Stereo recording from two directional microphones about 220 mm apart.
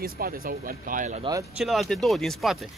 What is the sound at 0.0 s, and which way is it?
Speech, 40° right (ahead or behind).